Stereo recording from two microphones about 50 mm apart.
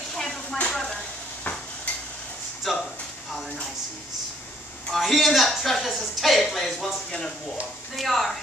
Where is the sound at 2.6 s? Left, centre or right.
Centre.